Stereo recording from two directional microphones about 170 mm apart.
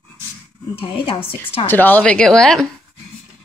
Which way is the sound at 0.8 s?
30° left (ahead or behind).